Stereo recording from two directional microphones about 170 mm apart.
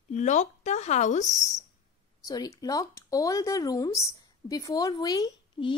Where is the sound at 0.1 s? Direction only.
45° left (ahead or behind).